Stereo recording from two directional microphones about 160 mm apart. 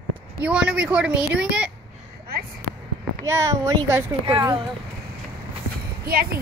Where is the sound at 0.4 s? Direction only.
5° right (ahead or behind).